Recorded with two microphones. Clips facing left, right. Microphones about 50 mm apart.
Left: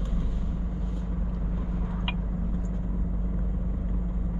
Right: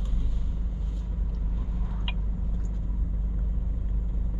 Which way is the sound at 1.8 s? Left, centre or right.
Left.